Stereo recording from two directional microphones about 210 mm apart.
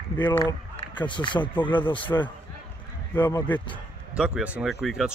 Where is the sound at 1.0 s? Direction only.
20° left (ahead or behind).